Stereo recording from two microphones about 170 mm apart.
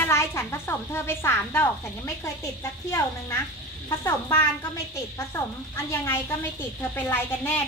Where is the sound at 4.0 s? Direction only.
15° left (ahead or behind).